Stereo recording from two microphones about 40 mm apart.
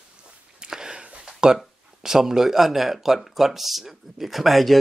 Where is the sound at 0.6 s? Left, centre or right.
Centre.